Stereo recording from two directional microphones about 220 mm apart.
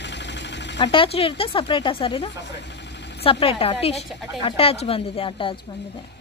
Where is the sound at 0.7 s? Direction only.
25° left (ahead or behind).